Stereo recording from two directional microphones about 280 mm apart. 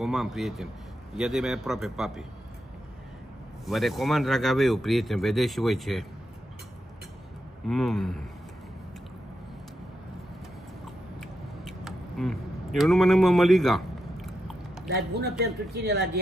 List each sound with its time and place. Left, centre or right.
0.0 s speech: centre
3.6 s speech: centre
7.6 s speech: centre
11.1 s a sound: centre
14.9 s a man's voice: right